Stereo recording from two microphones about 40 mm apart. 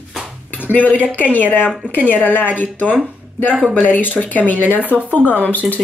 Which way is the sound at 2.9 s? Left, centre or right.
Centre.